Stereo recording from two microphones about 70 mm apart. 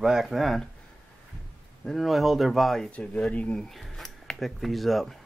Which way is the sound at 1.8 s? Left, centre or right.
Centre.